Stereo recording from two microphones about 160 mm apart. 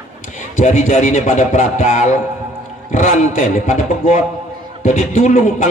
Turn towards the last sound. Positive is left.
turn(degrees=50)  # may be behind; listen again after turning